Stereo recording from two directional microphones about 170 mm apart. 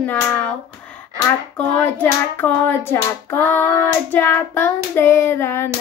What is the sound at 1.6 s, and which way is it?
Hands, 10° left (ahead or behind).